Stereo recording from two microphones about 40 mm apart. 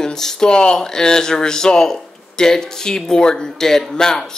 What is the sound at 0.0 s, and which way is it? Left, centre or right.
Speech, centre.